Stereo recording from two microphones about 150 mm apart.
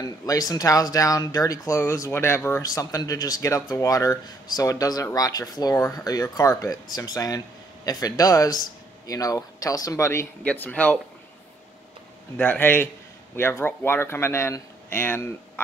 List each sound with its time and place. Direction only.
0.0 s speech: 25° left (ahead or behind)
12.4 s speech: 15° left (ahead or behind)